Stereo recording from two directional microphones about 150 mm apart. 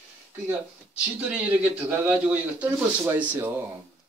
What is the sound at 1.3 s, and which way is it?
Speech, 10° right (ahead or behind).